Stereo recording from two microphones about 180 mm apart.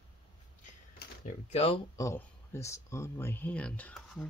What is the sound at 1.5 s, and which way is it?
Speech, 35° left (ahead or behind).